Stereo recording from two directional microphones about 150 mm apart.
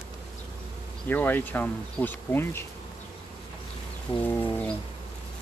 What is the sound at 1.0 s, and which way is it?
Speech, 15° left (ahead or behind).